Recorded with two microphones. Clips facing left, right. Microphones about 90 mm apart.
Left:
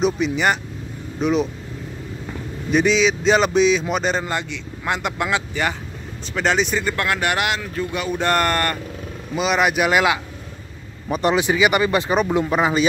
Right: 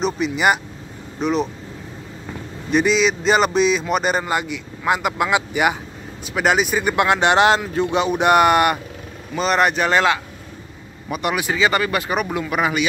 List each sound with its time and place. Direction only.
0.0 s speech: 5° right (ahead or behind)
2.7 s speech: centre (ahead or behind)
9.3 s speech: 5° left (ahead or behind)
11.1 s speech: 30° left (ahead or behind)